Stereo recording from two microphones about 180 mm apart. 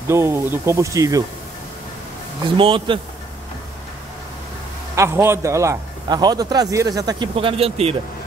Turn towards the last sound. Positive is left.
turn(degrees=-35)  # may be behind; listen again after turning